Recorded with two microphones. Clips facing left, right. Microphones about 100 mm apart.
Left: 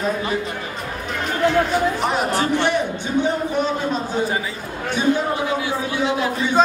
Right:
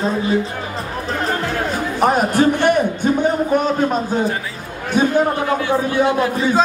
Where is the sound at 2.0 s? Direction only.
45° right (ahead or behind).